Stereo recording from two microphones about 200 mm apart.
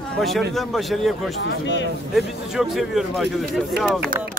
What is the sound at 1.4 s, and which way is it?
Speech, 60° left (ahead or behind).